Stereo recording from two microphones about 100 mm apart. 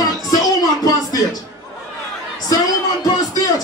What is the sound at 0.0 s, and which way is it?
Music, 40° left (ahead or behind).